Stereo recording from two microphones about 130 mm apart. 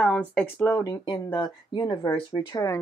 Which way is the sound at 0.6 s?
25° left (ahead or behind).